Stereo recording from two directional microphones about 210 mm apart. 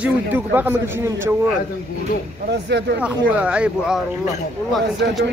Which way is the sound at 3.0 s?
5° right (ahead or behind).